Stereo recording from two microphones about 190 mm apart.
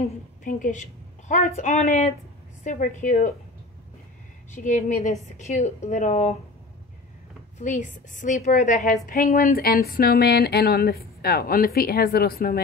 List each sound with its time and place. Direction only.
0.0 s a woman's voice: 45° left (ahead or behind)
4.5 s a woman's voice: 40° left (ahead or behind)
7.5 s a woman's voice: 40° left (ahead or behind)
9.0 s a sound: 45° left (ahead or behind)